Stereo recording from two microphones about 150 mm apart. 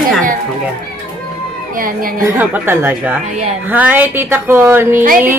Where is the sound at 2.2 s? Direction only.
15° right (ahead or behind).